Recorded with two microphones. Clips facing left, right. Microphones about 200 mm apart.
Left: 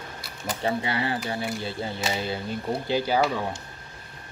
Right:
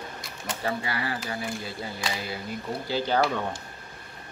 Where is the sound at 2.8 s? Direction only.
15° left (ahead or behind).